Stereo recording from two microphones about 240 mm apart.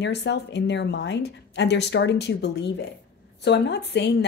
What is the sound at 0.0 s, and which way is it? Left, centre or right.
A woman's voice, left.